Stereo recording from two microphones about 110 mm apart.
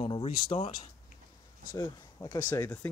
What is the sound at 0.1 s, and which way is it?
Speech, 55° left (ahead or behind).